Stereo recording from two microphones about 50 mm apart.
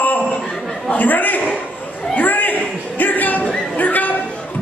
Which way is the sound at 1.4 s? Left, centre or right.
Left.